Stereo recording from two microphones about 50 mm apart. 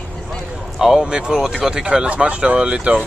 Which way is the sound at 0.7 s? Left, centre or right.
Centre.